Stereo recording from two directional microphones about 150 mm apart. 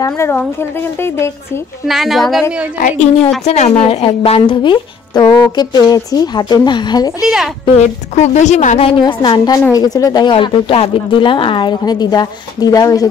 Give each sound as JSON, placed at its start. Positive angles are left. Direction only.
{"t": 0.0, "sound": "speech", "side_deg": 15}
{"t": 1.9, "sound": "a woman's voice", "side_deg": 0}
{"t": 3.4, "sound": "a woman's voice", "side_deg": 50}
{"t": 7.6, "sound": "a woman's voice", "side_deg": 50}
{"t": 9.5, "sound": "a woman's voice", "side_deg": 25}